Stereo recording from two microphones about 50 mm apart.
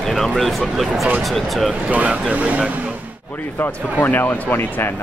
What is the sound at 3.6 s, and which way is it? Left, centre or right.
Speech, left.